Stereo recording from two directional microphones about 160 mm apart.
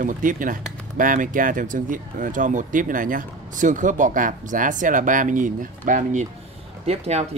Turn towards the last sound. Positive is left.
turn(degrees=-45)  # may be behind; listen again after turning